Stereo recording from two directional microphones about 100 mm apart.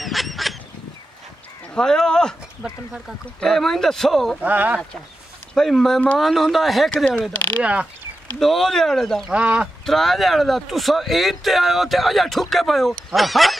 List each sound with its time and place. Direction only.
0.0 s goose: centre (ahead or behind)
1.7 s speech: 5° left (ahead or behind)
3.3 s speech: 5° left (ahead or behind)
4.4 s speech: 15° right (ahead or behind)
5.5 s speech: 5° left (ahead or behind)
7.6 s speech: 10° right (ahead or behind)
8.4 s speech: 5° left (ahead or behind)
9.3 s speech: 15° right (ahead or behind)
9.8 s speech: centre (ahead or behind)